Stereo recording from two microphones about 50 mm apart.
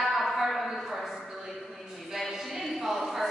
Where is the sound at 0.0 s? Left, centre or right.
Centre.